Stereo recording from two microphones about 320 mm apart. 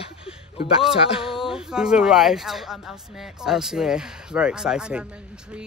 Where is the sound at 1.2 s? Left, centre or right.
Centre.